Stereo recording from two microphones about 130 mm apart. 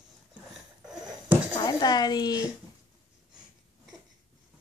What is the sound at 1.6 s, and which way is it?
Speech, 30° left (ahead or behind).